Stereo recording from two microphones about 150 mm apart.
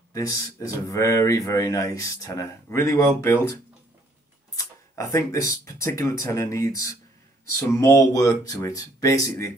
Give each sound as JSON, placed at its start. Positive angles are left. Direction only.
{"t": 0.1, "sound": "speech", "side_deg": 25}
{"t": 4.6, "sound": "speech", "side_deg": 25}